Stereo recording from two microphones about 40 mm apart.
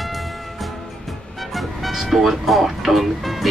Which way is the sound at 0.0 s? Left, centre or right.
Centre.